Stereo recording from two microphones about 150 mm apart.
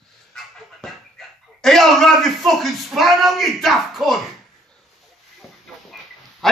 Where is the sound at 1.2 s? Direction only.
Centre (ahead or behind).